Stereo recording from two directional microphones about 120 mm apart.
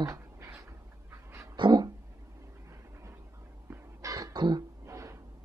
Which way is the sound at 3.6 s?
25° right (ahead or behind).